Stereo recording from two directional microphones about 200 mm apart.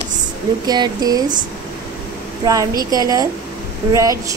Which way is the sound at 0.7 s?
20° right (ahead or behind).